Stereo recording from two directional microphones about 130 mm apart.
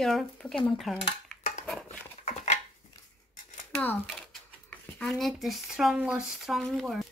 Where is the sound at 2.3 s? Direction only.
55° left (ahead or behind).